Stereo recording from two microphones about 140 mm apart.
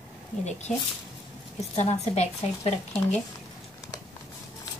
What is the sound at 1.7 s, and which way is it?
A woman's voice, 50° left (ahead or behind).